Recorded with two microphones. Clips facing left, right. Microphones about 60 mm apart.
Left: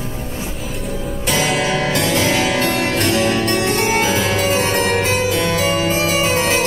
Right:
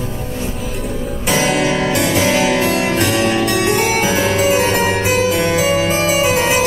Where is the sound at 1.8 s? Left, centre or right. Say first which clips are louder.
Right 2 dB; centre.